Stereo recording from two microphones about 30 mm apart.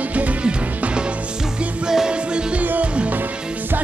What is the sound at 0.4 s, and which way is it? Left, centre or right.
Music, right.